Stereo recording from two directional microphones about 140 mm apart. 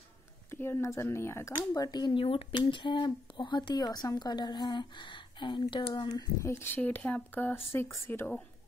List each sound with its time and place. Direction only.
0.5 s speech: 15° left (ahead or behind)